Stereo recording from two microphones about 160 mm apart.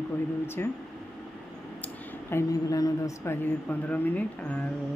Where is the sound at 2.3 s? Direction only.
20° left (ahead or behind).